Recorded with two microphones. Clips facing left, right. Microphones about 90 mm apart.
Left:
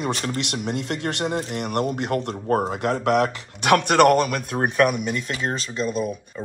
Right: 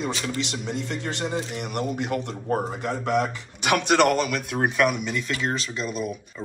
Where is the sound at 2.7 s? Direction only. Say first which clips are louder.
Left 5 dB; 70° left (ahead or behind); by 6.1 s 40° left (ahead or behind).